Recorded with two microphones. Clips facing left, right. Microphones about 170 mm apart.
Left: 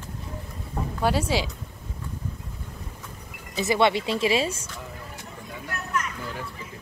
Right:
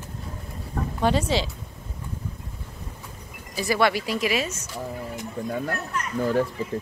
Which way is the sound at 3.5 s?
25° left (ahead or behind).